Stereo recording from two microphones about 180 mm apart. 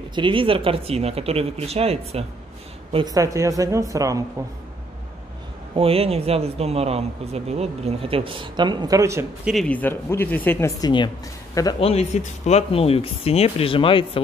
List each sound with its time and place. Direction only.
0.1 s a woman's voice: 30° right (ahead or behind)
5.8 s speech: 30° right (ahead or behind); by 9.5 s 15° right (ahead or behind)
9.5 s speech: 5° left (ahead or behind)
11.8 s speech: 35° left (ahead or behind)